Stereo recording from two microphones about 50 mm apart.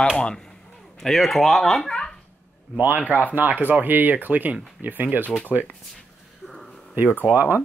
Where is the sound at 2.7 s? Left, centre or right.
Right.